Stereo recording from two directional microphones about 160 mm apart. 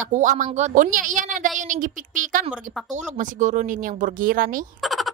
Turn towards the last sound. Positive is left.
turn(degrees=0)  # may be behind; listen again after turning